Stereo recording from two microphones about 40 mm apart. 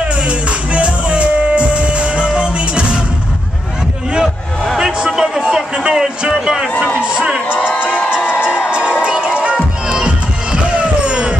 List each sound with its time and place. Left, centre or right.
0.3 s music: right
5.1 s a sound: centre
8.6 s music: right